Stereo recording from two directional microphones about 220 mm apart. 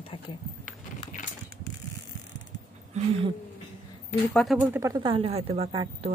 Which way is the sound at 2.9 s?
30° right (ahead or behind).